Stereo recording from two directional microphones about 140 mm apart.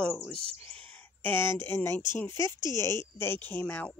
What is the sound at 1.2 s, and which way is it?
Speech, 15° left (ahead or behind).